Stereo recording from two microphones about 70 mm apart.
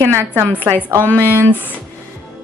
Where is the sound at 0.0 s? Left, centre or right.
Right.